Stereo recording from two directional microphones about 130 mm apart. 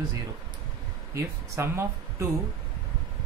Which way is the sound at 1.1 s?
25° right (ahead or behind).